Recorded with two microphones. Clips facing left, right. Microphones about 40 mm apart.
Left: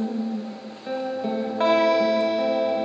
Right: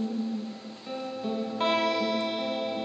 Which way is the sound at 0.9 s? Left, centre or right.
Centre.